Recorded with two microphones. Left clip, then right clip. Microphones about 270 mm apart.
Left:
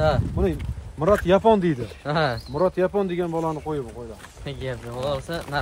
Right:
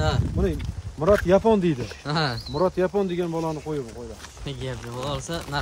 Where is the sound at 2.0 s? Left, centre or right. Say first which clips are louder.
Left 3 dB; centre.